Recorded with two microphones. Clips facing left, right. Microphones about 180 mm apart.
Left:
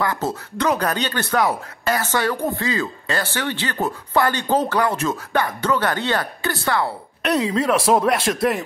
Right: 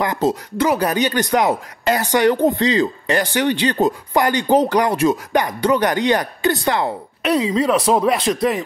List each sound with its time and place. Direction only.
0.0 s speech: 15° right (ahead or behind)
7.2 s speech: centre (ahead or behind)